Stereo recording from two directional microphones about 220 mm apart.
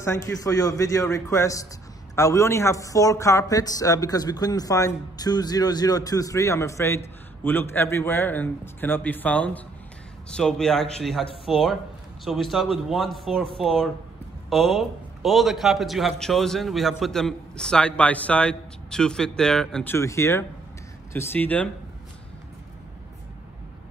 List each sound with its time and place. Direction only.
0.0 s a man's voice: 15° left (ahead or behind)